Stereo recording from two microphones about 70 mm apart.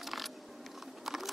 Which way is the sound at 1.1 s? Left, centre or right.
Centre.